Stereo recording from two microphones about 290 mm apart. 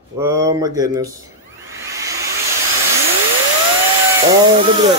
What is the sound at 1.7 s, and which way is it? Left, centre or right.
Vacuum cleaner, centre.